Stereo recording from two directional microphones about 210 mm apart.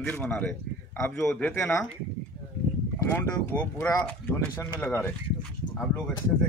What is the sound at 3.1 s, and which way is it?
Speech, 10° left (ahead or behind).